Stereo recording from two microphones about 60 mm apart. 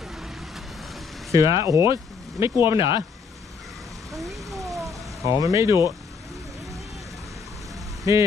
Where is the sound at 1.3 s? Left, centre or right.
Right.